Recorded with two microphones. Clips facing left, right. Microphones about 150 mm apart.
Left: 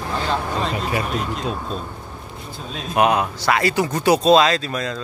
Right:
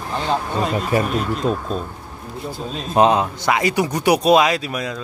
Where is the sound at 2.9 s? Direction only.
25° right (ahead or behind).